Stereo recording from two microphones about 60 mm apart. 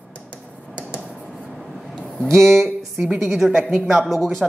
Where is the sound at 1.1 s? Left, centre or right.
Centre.